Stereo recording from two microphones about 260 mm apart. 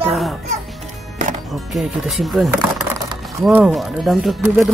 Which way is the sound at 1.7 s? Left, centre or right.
Centre.